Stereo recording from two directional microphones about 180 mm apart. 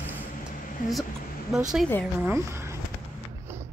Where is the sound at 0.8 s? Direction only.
50° left (ahead or behind).